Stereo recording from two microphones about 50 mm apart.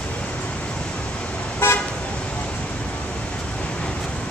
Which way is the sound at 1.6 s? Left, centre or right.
Left.